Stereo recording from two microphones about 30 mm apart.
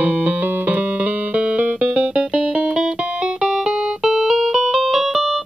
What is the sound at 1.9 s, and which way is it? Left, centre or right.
Music, right.